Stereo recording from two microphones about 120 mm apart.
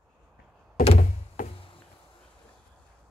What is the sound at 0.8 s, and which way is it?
Thunk, 85° left.